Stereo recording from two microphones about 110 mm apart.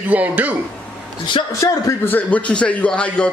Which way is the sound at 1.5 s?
30° left (ahead or behind).